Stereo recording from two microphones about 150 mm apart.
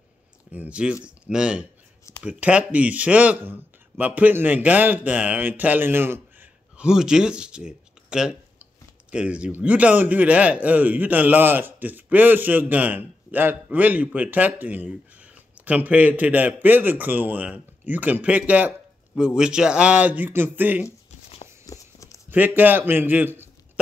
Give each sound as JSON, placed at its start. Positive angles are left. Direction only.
{"t": 0.5, "sound": "a man's voice", "side_deg": -10}
{"t": 21.6, "sound": "walk", "side_deg": 20}
{"t": 22.3, "sound": "a man's voice", "side_deg": -10}